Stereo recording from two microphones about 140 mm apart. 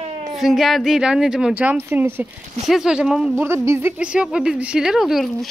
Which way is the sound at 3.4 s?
20° right (ahead or behind).